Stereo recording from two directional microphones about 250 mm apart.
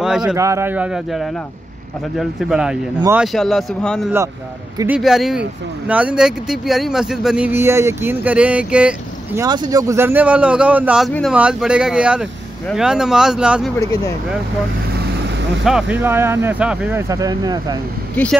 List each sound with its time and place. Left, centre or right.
0.0 s speech: centre
15.6 s speech: centre
18.2 s speech: centre